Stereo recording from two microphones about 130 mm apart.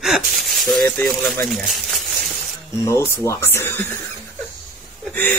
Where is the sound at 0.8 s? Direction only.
15° left (ahead or behind).